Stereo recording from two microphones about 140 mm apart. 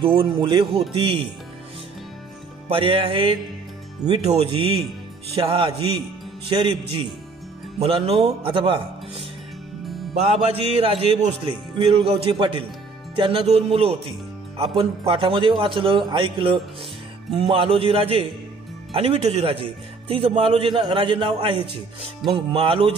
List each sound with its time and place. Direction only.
0.0 s a man's voice: 40° right (ahead or behind)
2.7 s a man's voice: 40° right (ahead or behind)
7.8 s a man's voice: 45° right (ahead or behind)
10.5 s a man's voice: 40° right (ahead or behind)